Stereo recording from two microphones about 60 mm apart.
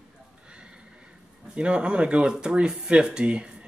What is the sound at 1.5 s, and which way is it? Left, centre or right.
Speech, centre.